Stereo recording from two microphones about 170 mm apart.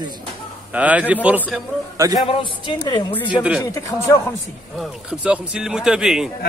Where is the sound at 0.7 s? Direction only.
10° right (ahead or behind).